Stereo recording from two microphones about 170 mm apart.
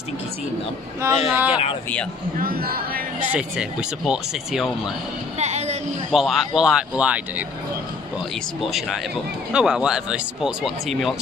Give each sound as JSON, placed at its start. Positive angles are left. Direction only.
{"t": 1.0, "sound": "speech", "side_deg": -10}
{"t": 2.4, "sound": "speech", "side_deg": -65}
{"t": 3.3, "sound": "speech", "side_deg": -5}
{"t": 5.4, "sound": "a sound", "side_deg": -40}
{"t": 6.1, "sound": "speech", "side_deg": 0}
{"t": 8.6, "sound": "speech", "side_deg": 0}